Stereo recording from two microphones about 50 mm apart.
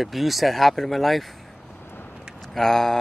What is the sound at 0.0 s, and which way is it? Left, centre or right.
Speech, centre.